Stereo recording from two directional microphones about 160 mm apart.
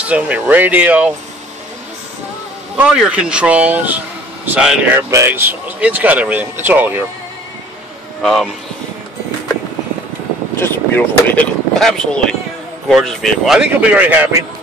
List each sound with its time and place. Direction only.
0.0 s speech: 10° right (ahead or behind)
2.8 s speech: 5° right (ahead or behind)
8.2 s speech: centre (ahead or behind)
10.6 s speech: 10° left (ahead or behind); by 14.4 s 10° right (ahead or behind)